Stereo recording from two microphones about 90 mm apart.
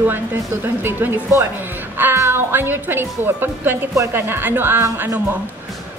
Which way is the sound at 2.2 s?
25° right (ahead or behind).